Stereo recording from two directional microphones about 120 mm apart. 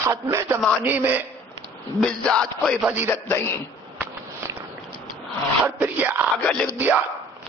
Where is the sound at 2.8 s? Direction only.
15° right (ahead or behind).